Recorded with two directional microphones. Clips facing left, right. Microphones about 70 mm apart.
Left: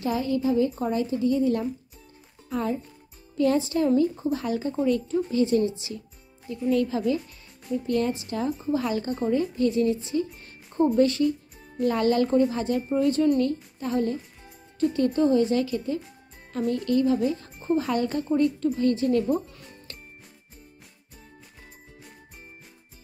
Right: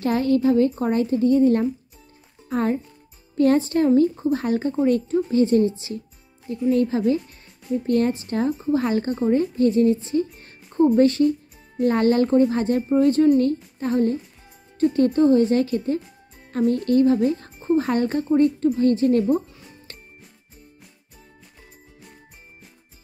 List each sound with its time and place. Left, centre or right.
0.0 s a woman's voice: right